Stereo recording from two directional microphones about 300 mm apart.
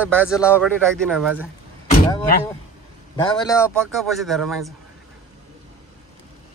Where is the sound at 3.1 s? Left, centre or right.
Centre.